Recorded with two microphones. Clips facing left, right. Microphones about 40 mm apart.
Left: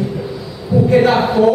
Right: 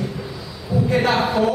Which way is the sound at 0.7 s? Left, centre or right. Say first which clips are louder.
Left 7 dB; centre.